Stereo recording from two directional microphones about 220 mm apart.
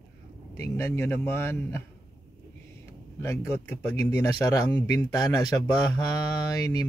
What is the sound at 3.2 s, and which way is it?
Speech, 10° left (ahead or behind).